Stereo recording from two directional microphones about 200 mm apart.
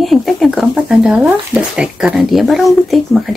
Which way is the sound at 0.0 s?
Centre (ahead or behind).